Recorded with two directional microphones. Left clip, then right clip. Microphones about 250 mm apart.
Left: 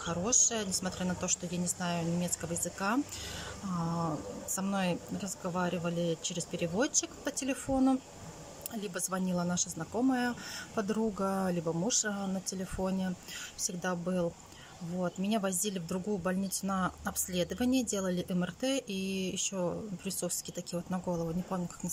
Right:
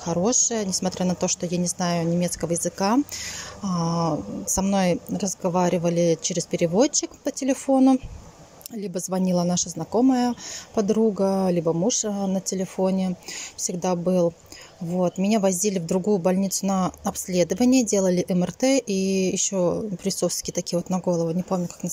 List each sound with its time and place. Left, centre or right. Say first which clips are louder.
0.0 s speech: right 8 dB; centre